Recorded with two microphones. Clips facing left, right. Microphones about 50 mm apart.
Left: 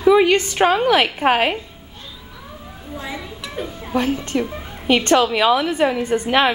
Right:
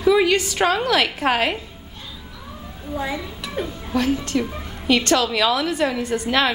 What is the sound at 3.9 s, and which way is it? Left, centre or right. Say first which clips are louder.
A woman's voice: left 1 dB; centre.